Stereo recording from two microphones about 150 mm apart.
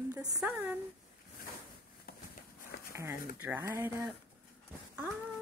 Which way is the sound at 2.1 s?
90° left.